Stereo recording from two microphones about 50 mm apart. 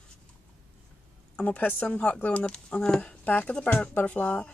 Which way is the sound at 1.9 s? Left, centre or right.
Left.